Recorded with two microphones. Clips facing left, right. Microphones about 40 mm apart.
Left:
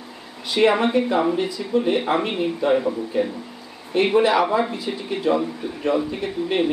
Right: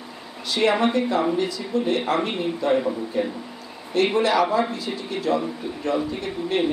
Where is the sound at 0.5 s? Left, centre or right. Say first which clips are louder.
Left 2 dB; centre.